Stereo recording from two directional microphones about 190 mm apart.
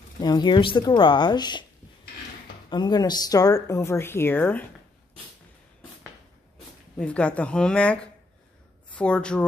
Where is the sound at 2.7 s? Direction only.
20° left (ahead or behind).